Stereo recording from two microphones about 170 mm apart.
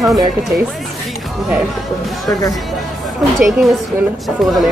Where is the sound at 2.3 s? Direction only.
20° left (ahead or behind).